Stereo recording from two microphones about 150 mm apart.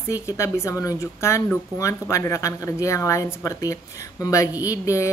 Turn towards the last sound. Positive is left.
turn(degrees=20)  # may be behind; listen again after turning